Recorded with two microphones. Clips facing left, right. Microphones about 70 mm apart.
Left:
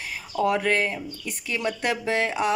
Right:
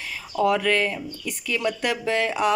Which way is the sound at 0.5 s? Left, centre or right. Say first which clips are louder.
Right 1 dB; left.